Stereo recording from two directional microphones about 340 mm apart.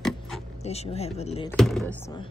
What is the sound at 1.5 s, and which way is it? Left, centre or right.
Speech, centre.